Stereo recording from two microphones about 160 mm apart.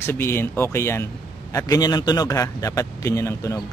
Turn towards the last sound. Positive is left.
turn(degrees=20)  # may be behind; listen again after turning